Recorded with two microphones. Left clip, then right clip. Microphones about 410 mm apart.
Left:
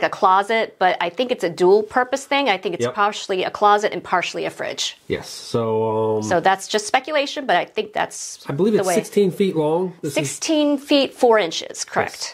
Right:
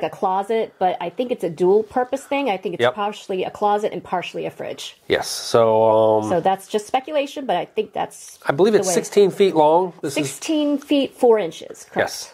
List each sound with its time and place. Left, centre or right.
0.0 s speech: left
5.1 s speech: right
6.2 s speech: left
8.5 s speech: right
10.1 s speech: centre